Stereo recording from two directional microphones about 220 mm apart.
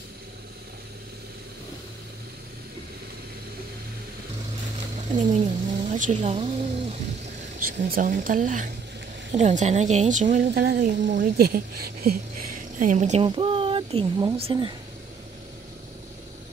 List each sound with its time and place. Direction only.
5.1 s speech: 30° right (ahead or behind)
7.6 s a woman's voice: 40° right (ahead or behind); by 14.7 s 25° right (ahead or behind)